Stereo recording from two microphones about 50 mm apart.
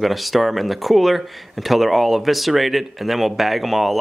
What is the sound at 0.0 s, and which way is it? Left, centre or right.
Speech, centre.